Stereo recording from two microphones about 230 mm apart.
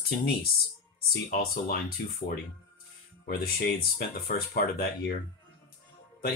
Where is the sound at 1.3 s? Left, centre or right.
Left.